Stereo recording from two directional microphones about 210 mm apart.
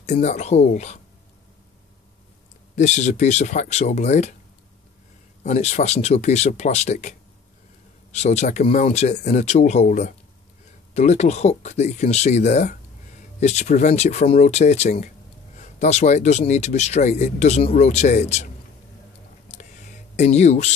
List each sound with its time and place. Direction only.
0.0 s speech: 35° left (ahead or behind)
2.7 s speech: 35° left (ahead or behind)
5.4 s speech: 30° left (ahead or behind)
20.2 s speech: 30° left (ahead or behind)